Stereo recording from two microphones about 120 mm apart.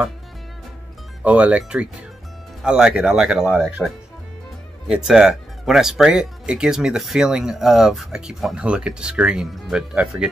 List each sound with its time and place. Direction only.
1.2 s speech: 10° right (ahead or behind)